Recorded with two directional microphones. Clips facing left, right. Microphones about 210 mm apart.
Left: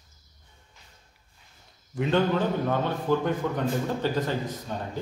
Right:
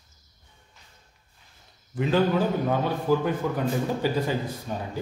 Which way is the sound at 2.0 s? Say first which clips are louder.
Right 1 dB; 5° right (ahead or behind).